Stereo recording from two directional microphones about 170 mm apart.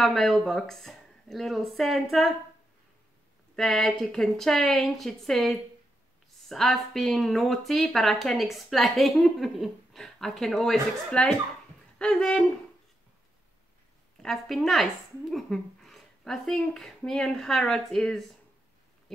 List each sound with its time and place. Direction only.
0.0 s speech: centre (ahead or behind)
3.5 s speech: 5° left (ahead or behind)
14.2 s speech: centre (ahead or behind)